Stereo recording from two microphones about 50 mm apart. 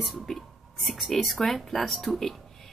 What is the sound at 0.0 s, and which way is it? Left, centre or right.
Speech, centre.